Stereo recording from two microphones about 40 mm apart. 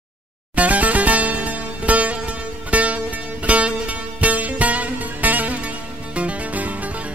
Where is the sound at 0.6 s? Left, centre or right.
Right.